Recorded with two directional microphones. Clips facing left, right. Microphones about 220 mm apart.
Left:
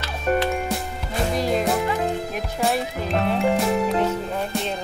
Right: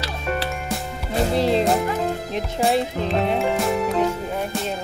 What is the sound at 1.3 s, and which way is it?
Music, 30° right (ahead or behind).